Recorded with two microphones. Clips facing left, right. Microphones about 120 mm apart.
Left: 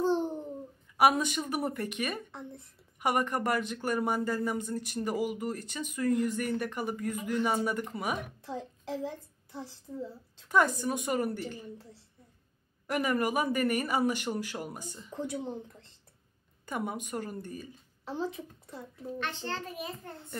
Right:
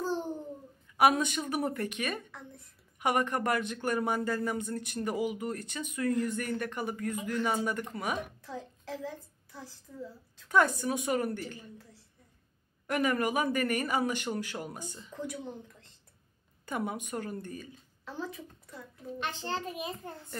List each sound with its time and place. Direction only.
0.9 s a man's voice: 5° left (ahead or behind)
8.4 s a child's voice: 25° left (ahead or behind)
10.5 s speech: centre (ahead or behind)
12.8 s speech: 5° left (ahead or behind)
15.1 s speech: 30° left (ahead or behind)
16.6 s speech: centre (ahead or behind)
18.0 s speech: 25° left (ahead or behind)
19.1 s a child's voice: 15° right (ahead or behind)